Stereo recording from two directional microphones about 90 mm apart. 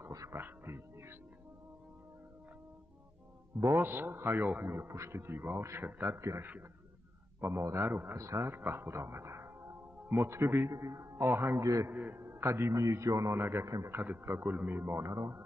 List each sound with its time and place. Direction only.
0.0 s dog: 35° right (ahead or behind)
0.4 s music: 25° right (ahead or behind)
3.5 s a man's voice: 30° right (ahead or behind)
11.9 s a man's voice: 20° right (ahead or behind)
13.9 s a man's voice: 20° right (ahead or behind)